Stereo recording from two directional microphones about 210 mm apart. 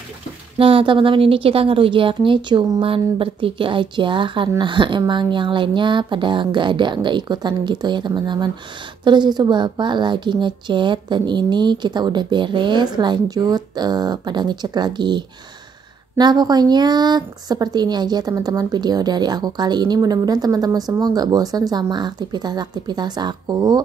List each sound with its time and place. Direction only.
0.6 s a woman's voice: 25° right (ahead or behind)